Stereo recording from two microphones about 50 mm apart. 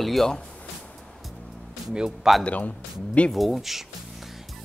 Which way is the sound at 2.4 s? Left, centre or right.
Left.